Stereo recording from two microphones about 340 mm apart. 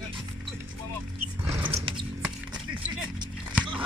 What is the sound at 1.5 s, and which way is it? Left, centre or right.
Music, centre.